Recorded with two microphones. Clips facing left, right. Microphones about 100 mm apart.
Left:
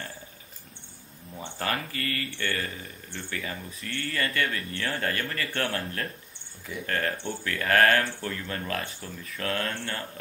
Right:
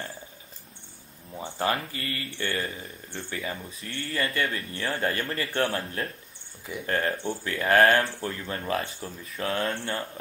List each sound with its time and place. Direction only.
1.6 s speech: 25° right (ahead or behind)